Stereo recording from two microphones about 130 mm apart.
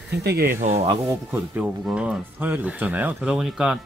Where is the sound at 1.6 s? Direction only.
10° right (ahead or behind).